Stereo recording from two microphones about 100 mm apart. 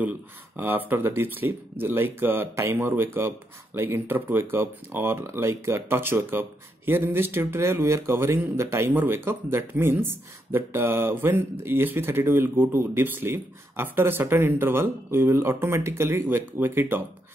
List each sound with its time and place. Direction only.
0.6 s speech: 20° right (ahead or behind)